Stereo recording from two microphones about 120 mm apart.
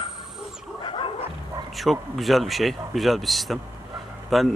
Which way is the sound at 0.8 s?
45° left (ahead or behind).